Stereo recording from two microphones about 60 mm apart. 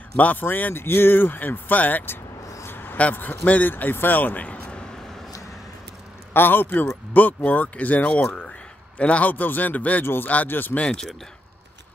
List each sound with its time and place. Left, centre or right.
0.2 s speech: left
2.6 s a sound: left
3.0 s speech: left
6.3 s speech: left
10.8 s speech: centre